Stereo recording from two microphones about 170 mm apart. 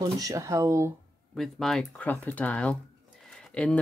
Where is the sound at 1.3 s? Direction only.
Centre (ahead or behind).